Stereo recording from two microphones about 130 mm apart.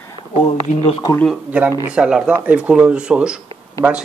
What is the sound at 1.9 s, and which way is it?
Speech, 5° right (ahead or behind).